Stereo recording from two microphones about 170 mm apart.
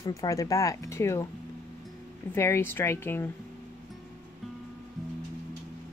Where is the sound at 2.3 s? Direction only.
15° left (ahead or behind).